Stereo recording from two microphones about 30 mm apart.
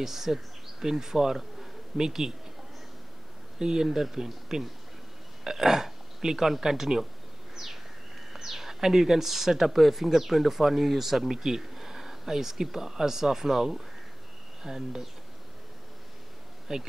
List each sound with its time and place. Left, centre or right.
0.0 s speech: centre
3.5 s speech: right
8.5 s speech: centre
16.7 s speech: centre